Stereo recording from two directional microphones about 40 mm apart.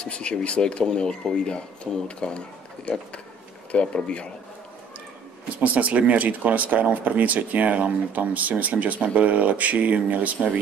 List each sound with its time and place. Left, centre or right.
0.0 s speech: left
5.6 s speech: right